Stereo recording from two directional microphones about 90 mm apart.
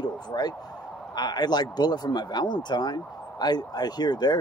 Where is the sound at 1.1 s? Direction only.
50° left (ahead or behind).